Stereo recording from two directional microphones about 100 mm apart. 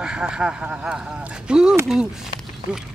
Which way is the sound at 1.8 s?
5° right (ahead or behind).